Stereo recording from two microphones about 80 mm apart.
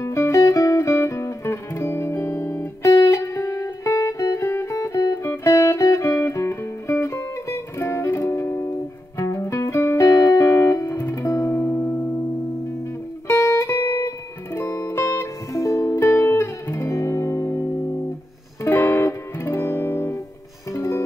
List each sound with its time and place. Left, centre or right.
0.0 s music: left
11.6 s music: left
13.3 s music: left